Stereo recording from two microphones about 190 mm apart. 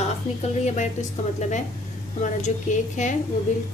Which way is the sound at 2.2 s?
40° left (ahead or behind).